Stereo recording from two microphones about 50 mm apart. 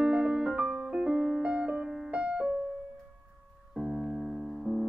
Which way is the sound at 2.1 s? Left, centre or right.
Right.